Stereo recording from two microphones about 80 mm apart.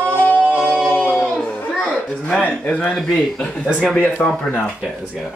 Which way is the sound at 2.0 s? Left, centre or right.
Centre.